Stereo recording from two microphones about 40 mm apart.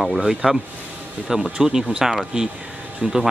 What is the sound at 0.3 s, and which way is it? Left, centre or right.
Speech, centre.